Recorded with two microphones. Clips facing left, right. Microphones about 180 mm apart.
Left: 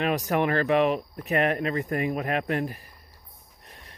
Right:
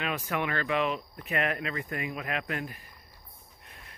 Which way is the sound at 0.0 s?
40° left (ahead or behind).